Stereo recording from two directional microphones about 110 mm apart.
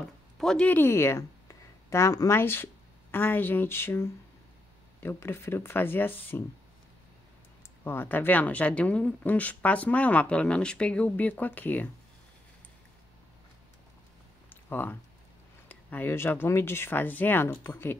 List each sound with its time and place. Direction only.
0.4 s a woman's voice: 5° left (ahead or behind)
7.8 s speech: 20° left (ahead or behind)
14.5 s a sound: 15° left (ahead or behind)
15.7 s speech: 15° left (ahead or behind)